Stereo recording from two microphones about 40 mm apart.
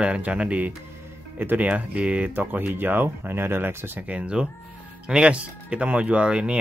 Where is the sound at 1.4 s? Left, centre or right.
Right.